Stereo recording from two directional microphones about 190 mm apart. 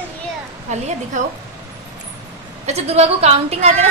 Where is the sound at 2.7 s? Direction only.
35° right (ahead or behind).